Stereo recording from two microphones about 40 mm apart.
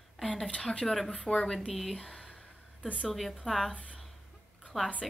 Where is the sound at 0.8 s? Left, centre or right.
Centre.